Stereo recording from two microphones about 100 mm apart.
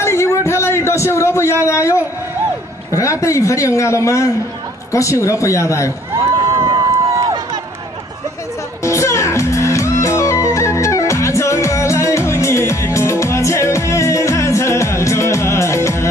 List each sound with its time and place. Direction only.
0.0 s a sound: 30° left (ahead or behind)
2.9 s a man's voice: 30° left (ahead or behind)
6.9 s run: 35° right (ahead or behind)
8.8 s music: 30° left (ahead or behind)